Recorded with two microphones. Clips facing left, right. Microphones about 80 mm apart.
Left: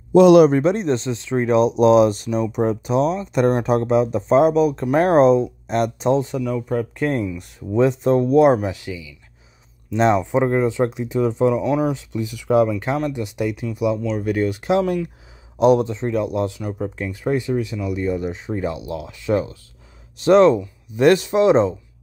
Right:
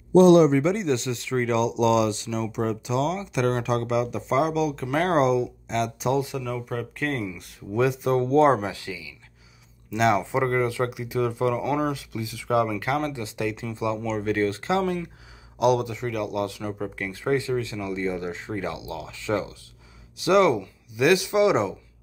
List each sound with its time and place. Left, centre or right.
0.1 s a man's voice: left
0.5 s speech: left
4.8 s speech: left
6.0 s speech: left
6.4 s speech: centre
8.0 s speech: left
9.9 s speech: left
10.4 s speech: centre
13.9 s speech: centre
14.2 s speech: centre
20.2 s speech: left
21.3 s speech: left